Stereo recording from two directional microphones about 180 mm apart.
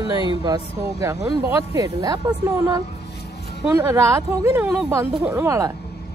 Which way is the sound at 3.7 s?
15° right (ahead or behind).